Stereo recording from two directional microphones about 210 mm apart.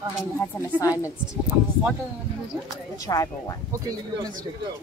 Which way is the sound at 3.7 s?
15° right (ahead or behind).